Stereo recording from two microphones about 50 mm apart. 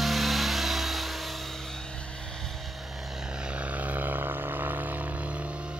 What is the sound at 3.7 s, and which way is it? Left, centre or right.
Vehicle, right.